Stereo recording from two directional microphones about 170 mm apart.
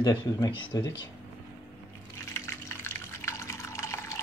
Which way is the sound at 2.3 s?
15° left (ahead or behind).